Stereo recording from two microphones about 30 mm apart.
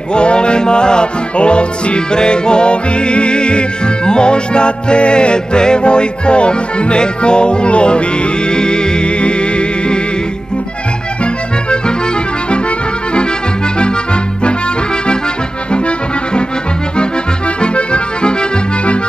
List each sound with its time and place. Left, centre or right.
0.1 s music: left
17.6 s accordion: left